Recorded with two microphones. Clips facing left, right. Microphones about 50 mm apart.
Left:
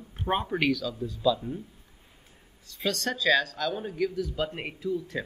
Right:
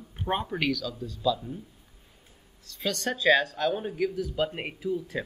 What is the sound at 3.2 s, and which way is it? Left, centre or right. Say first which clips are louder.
A man's voice: right 3 dB; right.